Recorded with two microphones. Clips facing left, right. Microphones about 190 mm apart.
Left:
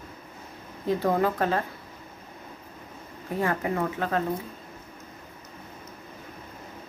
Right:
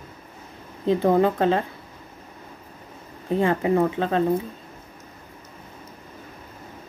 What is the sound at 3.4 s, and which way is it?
Speech, 25° right (ahead or behind).